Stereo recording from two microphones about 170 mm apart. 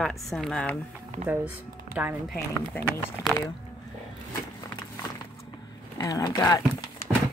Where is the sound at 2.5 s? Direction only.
10° left (ahead or behind).